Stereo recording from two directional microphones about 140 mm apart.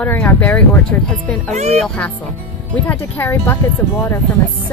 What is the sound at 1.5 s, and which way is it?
Speech, 50° right (ahead or behind).